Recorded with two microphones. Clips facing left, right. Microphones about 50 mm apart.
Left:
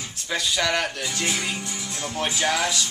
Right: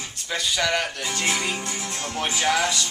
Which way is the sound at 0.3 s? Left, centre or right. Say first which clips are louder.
Even; centre.